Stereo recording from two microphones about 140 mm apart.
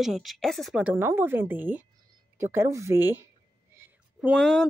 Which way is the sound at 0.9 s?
15° right (ahead or behind).